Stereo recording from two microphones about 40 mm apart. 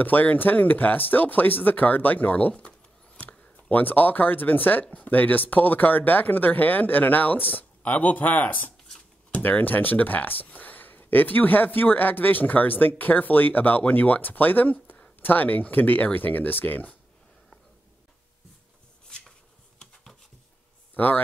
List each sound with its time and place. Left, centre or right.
0.0 s speech: left
3.2 s a sound: left
3.7 s speech: left
20.9 s speech: left